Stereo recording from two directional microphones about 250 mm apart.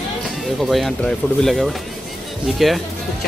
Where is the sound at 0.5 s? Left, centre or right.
Centre.